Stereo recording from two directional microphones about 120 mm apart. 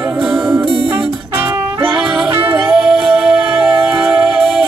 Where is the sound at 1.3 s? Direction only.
20° right (ahead or behind).